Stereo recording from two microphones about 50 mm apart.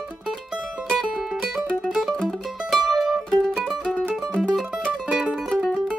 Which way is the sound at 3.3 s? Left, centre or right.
Centre.